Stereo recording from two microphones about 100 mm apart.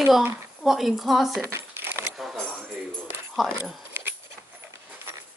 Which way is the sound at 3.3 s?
Centre (ahead or behind).